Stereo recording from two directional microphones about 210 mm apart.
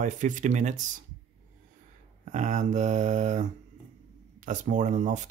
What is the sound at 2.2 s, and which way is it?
Mantra, 35° right (ahead or behind).